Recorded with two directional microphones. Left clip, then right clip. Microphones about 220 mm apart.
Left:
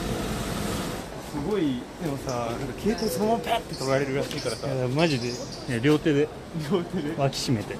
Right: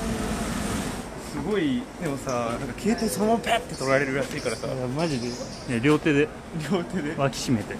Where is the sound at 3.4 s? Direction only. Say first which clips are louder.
Right 2 dB; 10° right (ahead or behind).